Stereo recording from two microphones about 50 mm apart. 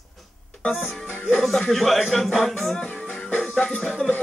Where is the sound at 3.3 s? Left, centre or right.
Centre.